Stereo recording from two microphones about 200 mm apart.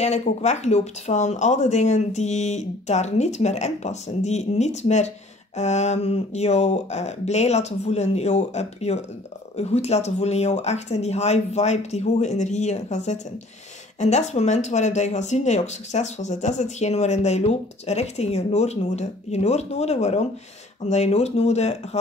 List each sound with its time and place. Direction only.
0.0 s speech: 35° left (ahead or behind)